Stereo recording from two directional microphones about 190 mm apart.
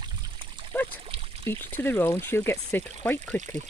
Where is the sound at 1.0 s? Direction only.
30° right (ahead or behind).